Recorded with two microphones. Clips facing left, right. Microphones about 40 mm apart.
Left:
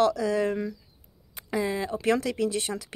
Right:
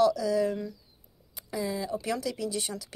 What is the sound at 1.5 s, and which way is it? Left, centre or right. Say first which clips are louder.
Speech: left 4 dB; left.